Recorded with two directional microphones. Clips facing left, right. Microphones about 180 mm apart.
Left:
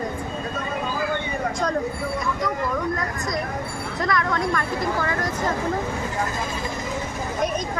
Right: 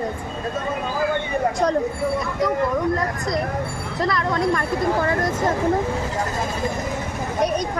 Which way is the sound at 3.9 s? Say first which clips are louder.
Right 2 dB; 30° right (ahead or behind).